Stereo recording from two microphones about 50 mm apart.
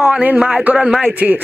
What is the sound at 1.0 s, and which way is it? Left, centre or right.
Speech, right.